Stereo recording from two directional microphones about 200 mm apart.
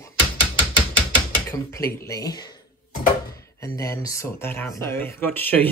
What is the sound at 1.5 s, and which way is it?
Speech, 15° left (ahead or behind).